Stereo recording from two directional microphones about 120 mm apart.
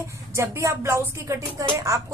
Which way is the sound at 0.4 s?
25° right (ahead or behind).